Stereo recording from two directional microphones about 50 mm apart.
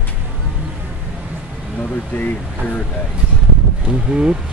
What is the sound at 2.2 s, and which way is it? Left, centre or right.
Speech, left.